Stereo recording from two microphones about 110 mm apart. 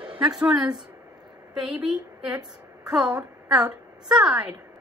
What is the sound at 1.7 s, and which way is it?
A woman's voice, 5° right (ahead or behind).